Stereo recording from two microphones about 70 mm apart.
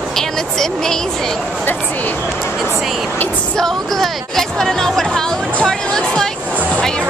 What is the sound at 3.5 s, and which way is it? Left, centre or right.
Speech, centre.